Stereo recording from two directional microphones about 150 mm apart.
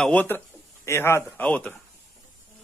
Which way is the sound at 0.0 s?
10° left (ahead or behind).